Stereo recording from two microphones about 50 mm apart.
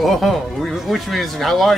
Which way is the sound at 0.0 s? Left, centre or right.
Centre.